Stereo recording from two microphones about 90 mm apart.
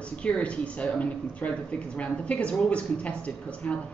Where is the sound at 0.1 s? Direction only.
15° left (ahead or behind).